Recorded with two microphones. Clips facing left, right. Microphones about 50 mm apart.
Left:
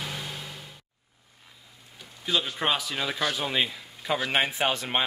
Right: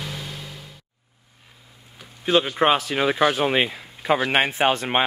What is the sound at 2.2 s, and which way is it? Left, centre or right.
Speech, right.